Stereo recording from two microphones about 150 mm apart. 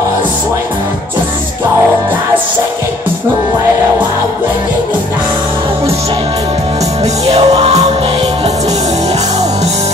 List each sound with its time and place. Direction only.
7.2 s music: 45° right (ahead or behind)